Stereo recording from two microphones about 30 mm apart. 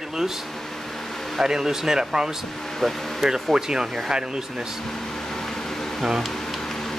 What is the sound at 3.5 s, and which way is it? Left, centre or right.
Speech, right.